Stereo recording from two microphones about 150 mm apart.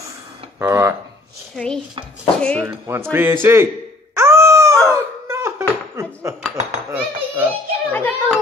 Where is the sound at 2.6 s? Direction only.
15° right (ahead or behind).